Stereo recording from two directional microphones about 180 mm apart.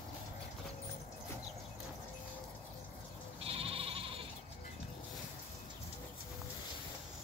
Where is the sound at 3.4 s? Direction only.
30° right (ahead or behind).